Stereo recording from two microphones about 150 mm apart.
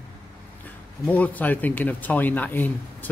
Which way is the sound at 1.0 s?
10° left (ahead or behind).